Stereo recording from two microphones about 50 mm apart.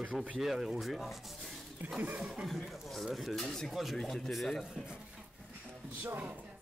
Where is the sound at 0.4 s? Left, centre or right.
Centre.